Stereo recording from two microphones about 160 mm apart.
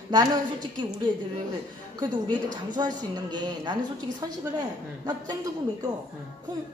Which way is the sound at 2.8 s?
25° right (ahead or behind).